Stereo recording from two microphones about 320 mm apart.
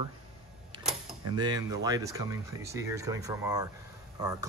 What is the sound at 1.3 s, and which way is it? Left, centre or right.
Speech, centre.